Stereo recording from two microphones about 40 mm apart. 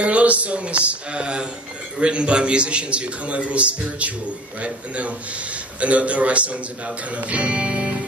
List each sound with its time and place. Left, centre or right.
0.0 s a man's voice: right